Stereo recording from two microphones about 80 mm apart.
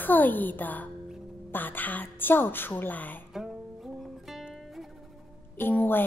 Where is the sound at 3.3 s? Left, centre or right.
Centre.